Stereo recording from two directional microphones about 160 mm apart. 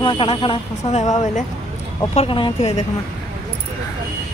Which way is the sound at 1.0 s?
45° left (ahead or behind).